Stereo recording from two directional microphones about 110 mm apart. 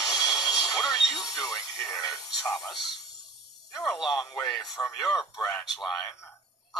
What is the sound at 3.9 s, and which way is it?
Speech, centre (ahead or behind).